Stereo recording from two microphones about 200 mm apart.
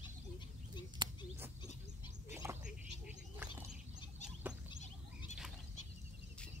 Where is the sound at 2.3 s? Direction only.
10° right (ahead or behind).